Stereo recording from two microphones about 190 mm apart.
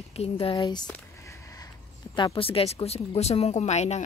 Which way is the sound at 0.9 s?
15° left (ahead or behind).